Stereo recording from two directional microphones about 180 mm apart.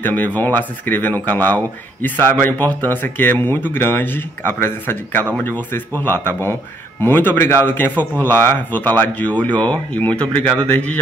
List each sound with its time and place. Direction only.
0.0 s speech: 10° left (ahead or behind)
10.2 s speech: 25° right (ahead or behind)
10.7 s speech: 10° left (ahead or behind)